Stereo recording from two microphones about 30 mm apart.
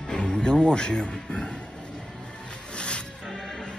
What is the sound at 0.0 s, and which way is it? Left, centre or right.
Music, left.